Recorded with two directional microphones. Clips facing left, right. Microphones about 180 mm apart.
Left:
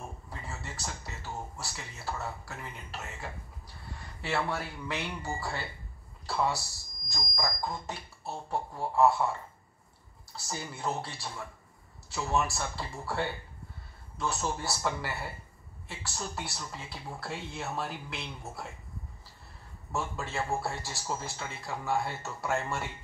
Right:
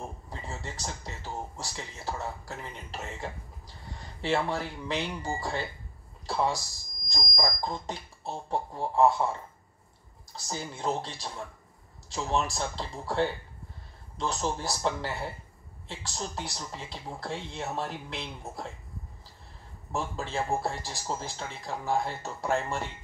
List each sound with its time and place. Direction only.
0.3 s speech: 20° right (ahead or behind)
10.3 s speech: 15° right (ahead or behind)
19.9 s speech: 15° right (ahead or behind)